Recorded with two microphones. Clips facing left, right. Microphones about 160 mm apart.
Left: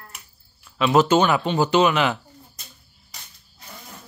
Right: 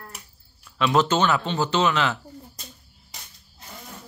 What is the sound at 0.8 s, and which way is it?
Speech, 10° left (ahead or behind).